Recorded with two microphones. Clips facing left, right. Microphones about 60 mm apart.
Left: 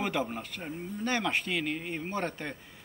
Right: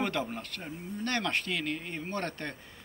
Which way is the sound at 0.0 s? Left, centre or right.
Centre.